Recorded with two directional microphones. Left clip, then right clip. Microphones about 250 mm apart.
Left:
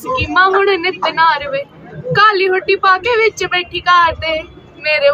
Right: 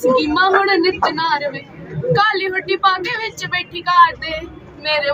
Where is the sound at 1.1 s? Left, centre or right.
Left.